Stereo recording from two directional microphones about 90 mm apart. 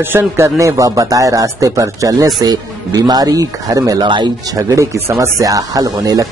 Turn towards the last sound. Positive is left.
turn(degrees=-40)  # may be behind; listen again after turning